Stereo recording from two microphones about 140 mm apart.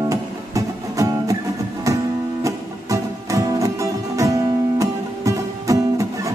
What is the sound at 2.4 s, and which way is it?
Music, 25° right (ahead or behind).